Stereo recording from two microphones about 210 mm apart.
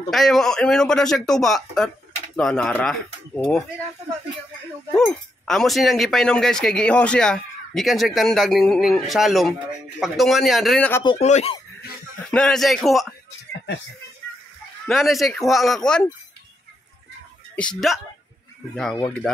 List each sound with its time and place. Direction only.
0.1 s speech: centre (ahead or behind)
4.9 s speech: centre (ahead or behind)
10.9 s speech: 15° left (ahead or behind)
11.1 s speech: 30° left (ahead or behind)
12.3 s speech: 5° left (ahead or behind)
14.9 s speech: centre (ahead or behind)
17.6 s speech: 5° left (ahead or behind)